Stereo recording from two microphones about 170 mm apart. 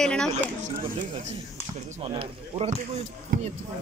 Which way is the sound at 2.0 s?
35° right (ahead or behind).